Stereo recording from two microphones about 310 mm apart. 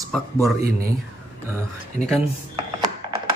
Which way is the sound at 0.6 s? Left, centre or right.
Right.